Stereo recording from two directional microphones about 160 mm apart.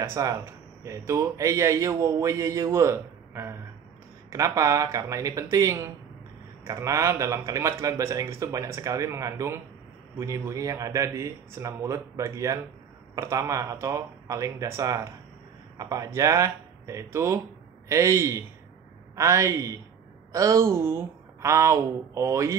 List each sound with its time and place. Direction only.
0.1 s speech: 20° right (ahead or behind)